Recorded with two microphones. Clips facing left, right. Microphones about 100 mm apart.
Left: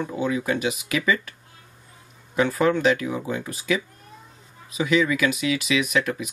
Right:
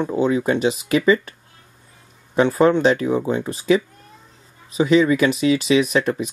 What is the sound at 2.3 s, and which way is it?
Speech, 30° right (ahead or behind).